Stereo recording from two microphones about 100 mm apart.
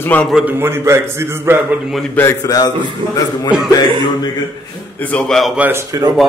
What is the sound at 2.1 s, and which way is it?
Speech, 25° left (ahead or behind).